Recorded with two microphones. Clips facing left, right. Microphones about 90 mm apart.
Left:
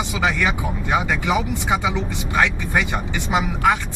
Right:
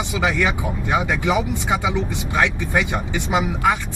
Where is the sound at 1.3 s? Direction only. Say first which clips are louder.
Even; 5° left (ahead or behind).